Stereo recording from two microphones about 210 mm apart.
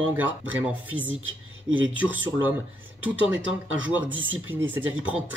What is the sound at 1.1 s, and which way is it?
Speech, 65° right (ahead or behind).